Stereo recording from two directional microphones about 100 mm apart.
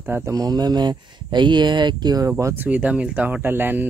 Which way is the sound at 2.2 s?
25° right (ahead or behind).